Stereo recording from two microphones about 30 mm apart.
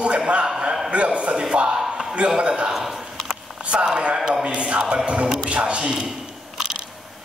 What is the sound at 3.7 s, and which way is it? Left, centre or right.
A man's voice, right.